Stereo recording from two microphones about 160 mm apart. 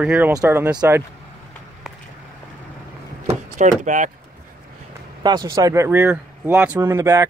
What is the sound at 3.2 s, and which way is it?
Door, 50° right (ahead or behind).